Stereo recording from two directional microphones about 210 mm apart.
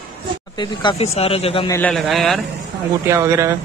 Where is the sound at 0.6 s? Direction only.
25° left (ahead or behind).